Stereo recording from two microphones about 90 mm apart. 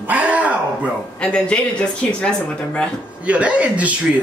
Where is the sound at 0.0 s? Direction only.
15° right (ahead or behind).